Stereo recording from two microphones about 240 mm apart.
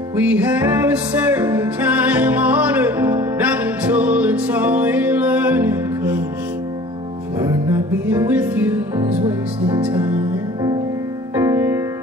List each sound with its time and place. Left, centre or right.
0.1 s music: centre
7.6 s music: centre